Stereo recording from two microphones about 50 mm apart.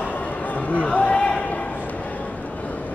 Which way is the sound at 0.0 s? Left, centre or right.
Left.